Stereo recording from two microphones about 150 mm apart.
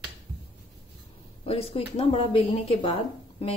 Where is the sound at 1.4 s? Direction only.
40° left (ahead or behind).